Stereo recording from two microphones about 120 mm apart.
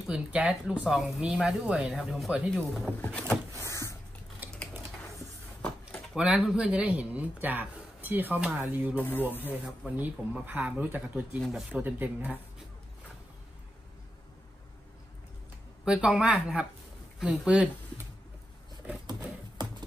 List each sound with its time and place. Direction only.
0.0 s speech: 5° right (ahead or behind)
2.9 s speech: 10° left (ahead or behind)
3.6 s a sound: 25° left (ahead or behind)
6.1 s speech: 5° right (ahead or behind)
8.9 s speech: 15° left (ahead or behind)
9.8 s speech: 10° right (ahead or behind)
11.4 s speech: 5° right (ahead or behind)
11.8 s speech: 15° right (ahead or behind)
15.8 s speech: 5° right (ahead or behind)
19.0 s a sound: 35° right (ahead or behind)